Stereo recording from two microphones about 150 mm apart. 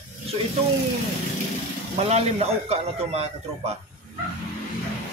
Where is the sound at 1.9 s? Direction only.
45° right (ahead or behind).